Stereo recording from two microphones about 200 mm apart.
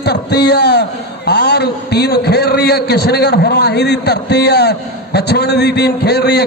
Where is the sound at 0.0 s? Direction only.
55° left (ahead or behind).